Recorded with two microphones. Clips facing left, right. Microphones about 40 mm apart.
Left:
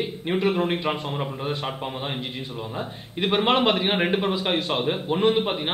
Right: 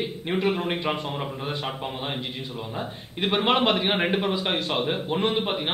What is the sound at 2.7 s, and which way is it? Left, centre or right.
A man's voice, centre.